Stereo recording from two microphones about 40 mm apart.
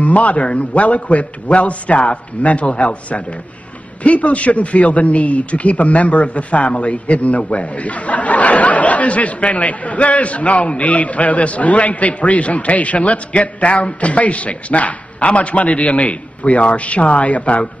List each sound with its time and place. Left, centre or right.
0.0 s speech: left